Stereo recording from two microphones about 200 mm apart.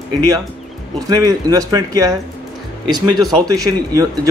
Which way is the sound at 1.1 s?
20° right (ahead or behind).